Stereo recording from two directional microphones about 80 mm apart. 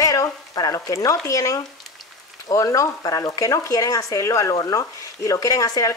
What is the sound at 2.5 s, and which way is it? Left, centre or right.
Speech, left.